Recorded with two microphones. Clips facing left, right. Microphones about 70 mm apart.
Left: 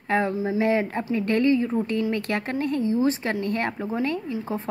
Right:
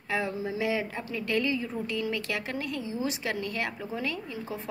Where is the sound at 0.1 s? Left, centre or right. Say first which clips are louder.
Left 7 dB; left.